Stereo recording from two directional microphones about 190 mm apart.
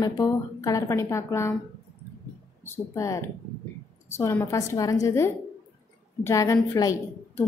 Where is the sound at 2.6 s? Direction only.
15° left (ahead or behind).